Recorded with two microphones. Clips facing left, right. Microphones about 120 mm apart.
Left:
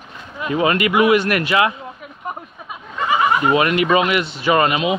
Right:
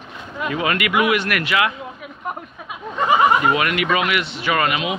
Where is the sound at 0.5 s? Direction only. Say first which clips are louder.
Left 4 dB; 30° left (ahead or behind).